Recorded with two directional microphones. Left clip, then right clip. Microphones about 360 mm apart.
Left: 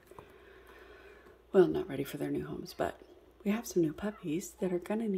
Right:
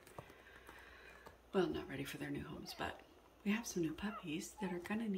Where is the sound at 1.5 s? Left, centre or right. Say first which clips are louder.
Left 12 dB; centre.